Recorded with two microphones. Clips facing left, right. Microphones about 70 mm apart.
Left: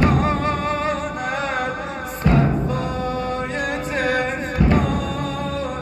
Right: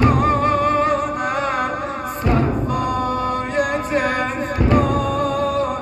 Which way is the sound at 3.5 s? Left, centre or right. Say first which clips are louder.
Right 4 dB; right.